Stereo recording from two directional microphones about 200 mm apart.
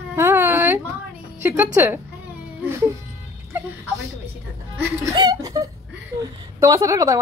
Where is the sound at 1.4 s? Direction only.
10° right (ahead or behind).